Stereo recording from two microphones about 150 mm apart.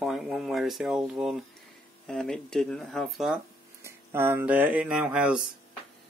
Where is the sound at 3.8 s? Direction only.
15° right (ahead or behind).